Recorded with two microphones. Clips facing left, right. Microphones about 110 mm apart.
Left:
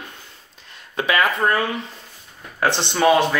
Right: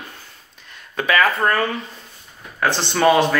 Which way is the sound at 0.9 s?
20° left (ahead or behind).